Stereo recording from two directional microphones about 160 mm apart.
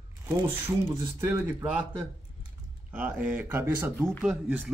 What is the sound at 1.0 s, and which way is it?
Speech, 15° right (ahead or behind).